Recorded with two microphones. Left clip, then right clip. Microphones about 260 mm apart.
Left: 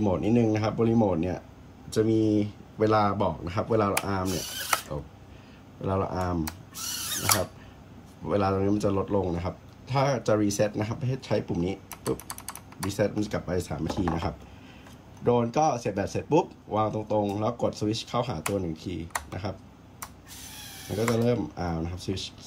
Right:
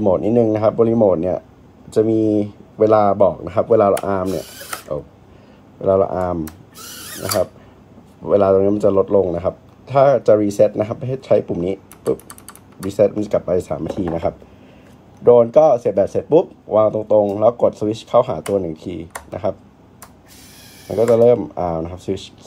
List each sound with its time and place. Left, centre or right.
0.2 s speech: centre
8.3 s speech: centre
11.6 s typing: centre
13.3 s speech: centre
17.4 s speech: left
17.8 s speech: centre
20.8 s speech: centre